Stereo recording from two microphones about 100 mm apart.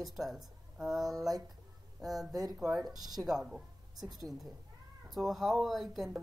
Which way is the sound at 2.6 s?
Centre (ahead or behind).